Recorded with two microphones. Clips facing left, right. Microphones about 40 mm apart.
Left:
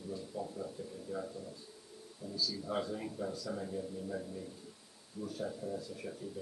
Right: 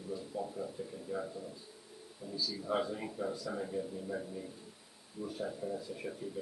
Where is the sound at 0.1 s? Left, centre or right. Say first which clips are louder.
Right 2 dB; centre.